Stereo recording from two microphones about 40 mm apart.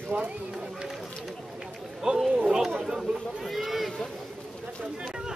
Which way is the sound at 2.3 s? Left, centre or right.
Centre.